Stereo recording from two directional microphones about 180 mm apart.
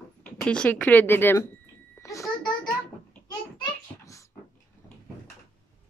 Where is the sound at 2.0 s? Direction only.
15° left (ahead or behind).